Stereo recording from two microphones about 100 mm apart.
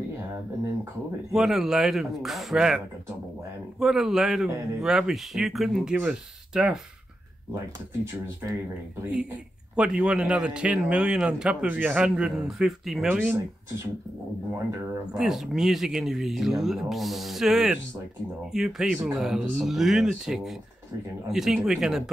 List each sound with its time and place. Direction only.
1.3 s speech: 5° right (ahead or behind)
3.8 s a man's voice: 5° right (ahead or behind)
8.0 s speech: 30° right (ahead or behind)
9.8 s a man's voice: 10° right (ahead or behind)
15.1 s speech: 5° right (ahead or behind)